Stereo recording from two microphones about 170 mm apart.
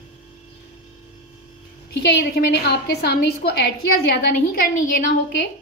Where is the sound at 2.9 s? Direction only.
75° left (ahead or behind).